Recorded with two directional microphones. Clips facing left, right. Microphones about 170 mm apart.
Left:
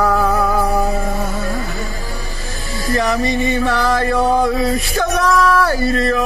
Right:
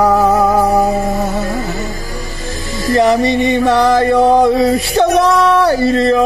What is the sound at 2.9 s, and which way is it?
Music, 30° right (ahead or behind).